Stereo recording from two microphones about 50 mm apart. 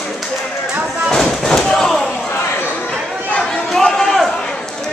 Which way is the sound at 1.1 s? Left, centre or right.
Centre.